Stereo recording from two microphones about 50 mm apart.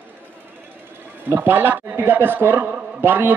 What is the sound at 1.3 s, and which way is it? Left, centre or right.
Speech, right.